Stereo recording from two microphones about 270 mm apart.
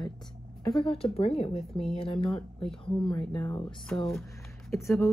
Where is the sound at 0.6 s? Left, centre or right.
Centre.